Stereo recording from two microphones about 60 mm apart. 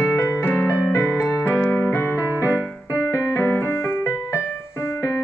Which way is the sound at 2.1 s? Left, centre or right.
Right.